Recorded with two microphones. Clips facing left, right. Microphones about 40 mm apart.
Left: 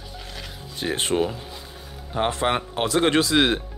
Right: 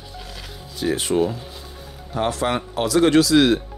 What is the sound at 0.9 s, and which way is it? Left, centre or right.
Speech, left.